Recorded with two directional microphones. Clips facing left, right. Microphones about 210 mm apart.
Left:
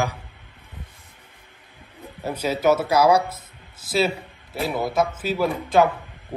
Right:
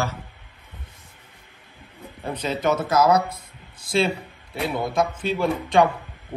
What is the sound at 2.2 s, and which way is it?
Speech, 10° left (ahead or behind).